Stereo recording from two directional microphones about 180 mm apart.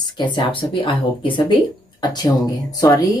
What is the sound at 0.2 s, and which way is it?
Speech, 30° left (ahead or behind).